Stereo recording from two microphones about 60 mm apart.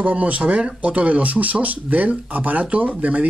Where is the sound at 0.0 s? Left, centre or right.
Right.